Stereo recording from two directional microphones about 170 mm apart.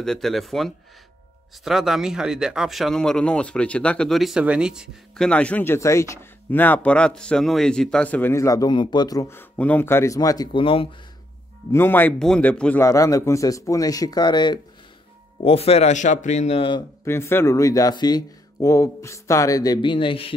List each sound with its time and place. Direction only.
0.0 s speech: centre (ahead or behind); by 10.9 s 30° left (ahead or behind)
11.7 s speech: 10° left (ahead or behind); by 16.8 s 30° left (ahead or behind)
17.0 s speech: 15° left (ahead or behind); by 20.3 s 30° left (ahead or behind)